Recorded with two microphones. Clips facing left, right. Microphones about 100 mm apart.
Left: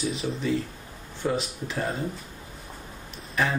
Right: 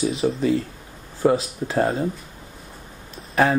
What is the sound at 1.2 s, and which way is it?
Speech, 45° right (ahead or behind).